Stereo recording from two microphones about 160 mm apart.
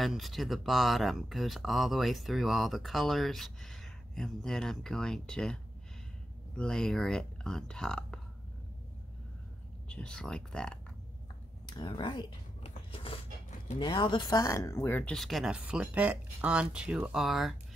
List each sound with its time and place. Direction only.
0.0 s speech: centre (ahead or behind)
9.8 s speech: 5° left (ahead or behind)
11.7 s a sound: 30° left (ahead or behind)
13.7 s speech: 30° left (ahead or behind); by 17.6 s centre (ahead or behind)